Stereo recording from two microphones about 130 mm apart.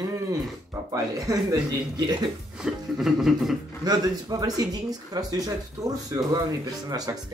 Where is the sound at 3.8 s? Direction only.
30° right (ahead or behind).